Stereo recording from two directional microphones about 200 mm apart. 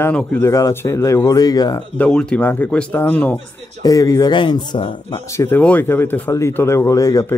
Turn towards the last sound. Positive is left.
turn(degrees=15)  # may be behind; listen again after turning